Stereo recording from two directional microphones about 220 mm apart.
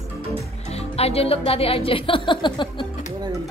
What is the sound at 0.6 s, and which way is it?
Speech, 30° left (ahead or behind).